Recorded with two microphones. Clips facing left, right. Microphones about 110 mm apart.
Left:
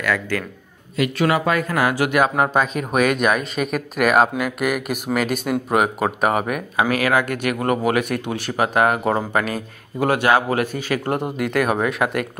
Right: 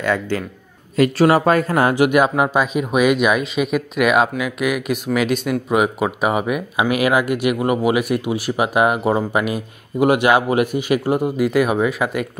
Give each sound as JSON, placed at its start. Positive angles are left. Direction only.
{"t": 0.0, "sound": "speech", "side_deg": -25}
{"t": 0.9, "sound": "speech", "side_deg": -40}
{"t": 2.0, "sound": "speech", "side_deg": -15}
{"t": 11.1, "sound": "speech", "side_deg": -5}